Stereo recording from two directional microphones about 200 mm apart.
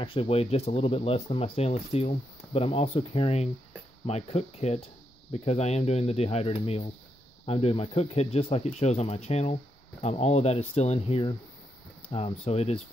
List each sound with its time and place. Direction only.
0.0 s speech: 25° left (ahead or behind)